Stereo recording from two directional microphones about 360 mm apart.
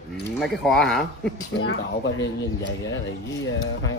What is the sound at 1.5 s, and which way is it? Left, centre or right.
Speech, left.